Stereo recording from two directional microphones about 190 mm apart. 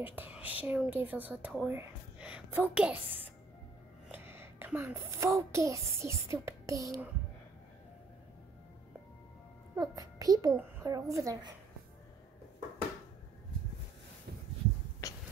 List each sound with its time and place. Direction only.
0.0 s speech: 10° right (ahead or behind)
4.1 s a child's voice: 10° right (ahead or behind)
9.8 s speech: 20° right (ahead or behind)
15.0 s a sound: 15° left (ahead or behind)